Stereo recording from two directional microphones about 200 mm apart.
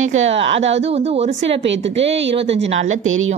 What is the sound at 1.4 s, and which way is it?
Speech, 65° right (ahead or behind).